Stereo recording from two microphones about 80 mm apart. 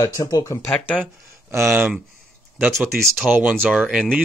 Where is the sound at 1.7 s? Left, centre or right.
Centre.